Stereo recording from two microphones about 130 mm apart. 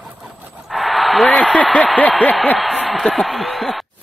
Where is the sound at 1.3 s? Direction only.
10° left (ahead or behind).